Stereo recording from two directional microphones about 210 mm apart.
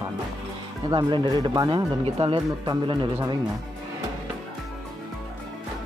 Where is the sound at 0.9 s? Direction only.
20° right (ahead or behind).